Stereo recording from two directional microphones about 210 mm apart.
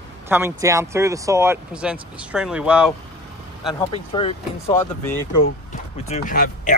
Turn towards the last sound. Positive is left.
turn(degrees=40)  # may be behind; listen again after turning